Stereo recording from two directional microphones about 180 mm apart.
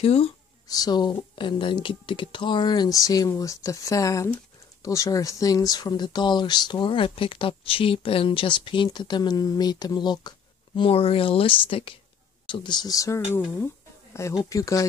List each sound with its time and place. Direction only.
0.0 s speech: 35° left (ahead or behind)
0.7 s speech: 20° left (ahead or behind)